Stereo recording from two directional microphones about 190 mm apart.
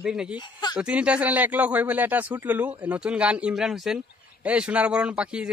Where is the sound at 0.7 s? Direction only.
5° right (ahead or behind).